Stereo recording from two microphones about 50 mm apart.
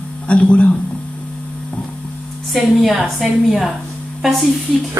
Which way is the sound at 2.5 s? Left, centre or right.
Centre.